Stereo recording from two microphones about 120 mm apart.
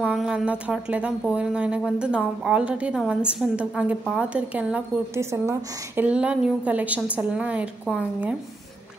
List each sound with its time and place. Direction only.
0.0 s speech: 5° right (ahead or behind)
5.1 s speech: 25° right (ahead or behind)
6.0 s speech: 10° right (ahead or behind)